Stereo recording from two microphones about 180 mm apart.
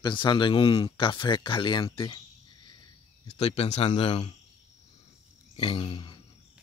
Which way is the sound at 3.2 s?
35° left (ahead or behind).